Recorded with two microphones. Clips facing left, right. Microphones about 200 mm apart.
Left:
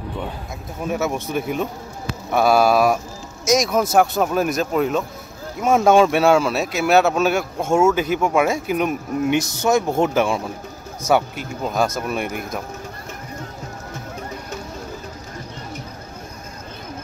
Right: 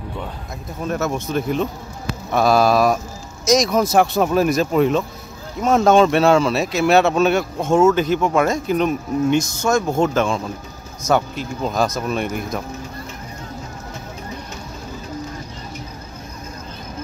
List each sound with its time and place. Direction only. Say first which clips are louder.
0.8 s speech: even; 10° left (ahead or behind)
11.6 s speech: right 1 dB; 5° left (ahead or behind)